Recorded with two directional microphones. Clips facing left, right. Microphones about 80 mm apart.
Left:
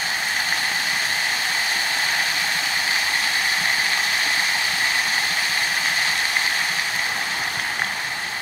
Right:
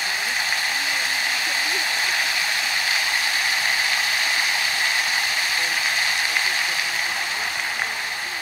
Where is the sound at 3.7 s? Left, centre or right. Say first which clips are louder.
Left 1 dB; left.